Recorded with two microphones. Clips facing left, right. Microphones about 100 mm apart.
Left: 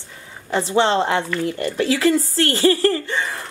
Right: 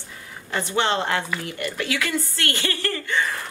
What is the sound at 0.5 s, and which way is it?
Speech, 30° left (ahead or behind).